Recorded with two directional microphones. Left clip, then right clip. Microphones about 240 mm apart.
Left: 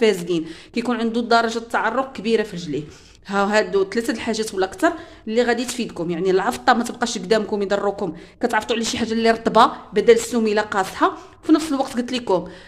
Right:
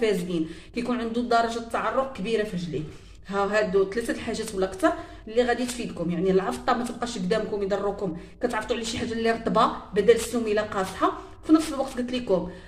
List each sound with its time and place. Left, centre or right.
0.0 s a woman's voice: left